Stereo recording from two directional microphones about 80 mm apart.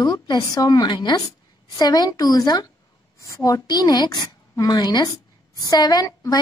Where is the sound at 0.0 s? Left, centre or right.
Left.